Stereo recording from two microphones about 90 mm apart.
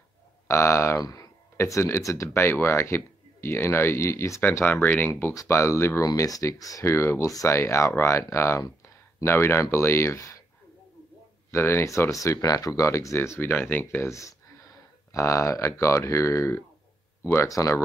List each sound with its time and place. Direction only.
0.5 s speech: 30° left (ahead or behind)
1.6 s speech: 30° left (ahead or behind)
5.3 s speech: 35° left (ahead or behind)
11.5 s speech: 30° left (ahead or behind)